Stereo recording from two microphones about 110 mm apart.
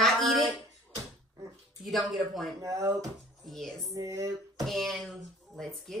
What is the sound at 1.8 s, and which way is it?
Speech, centre (ahead or behind).